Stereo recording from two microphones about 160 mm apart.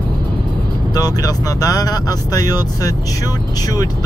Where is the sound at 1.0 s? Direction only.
25° left (ahead or behind).